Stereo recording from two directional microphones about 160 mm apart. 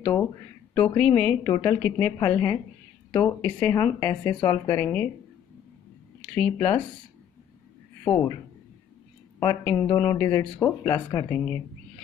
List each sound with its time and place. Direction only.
0.0 s speech: 10° left (ahead or behind)
6.2 s speech: 10° left (ahead or behind)
9.4 s speech: 15° left (ahead or behind)